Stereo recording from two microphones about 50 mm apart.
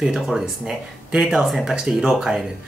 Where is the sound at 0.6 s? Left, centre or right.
Centre.